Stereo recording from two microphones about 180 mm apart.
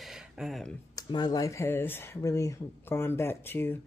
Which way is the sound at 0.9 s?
20° left (ahead or behind).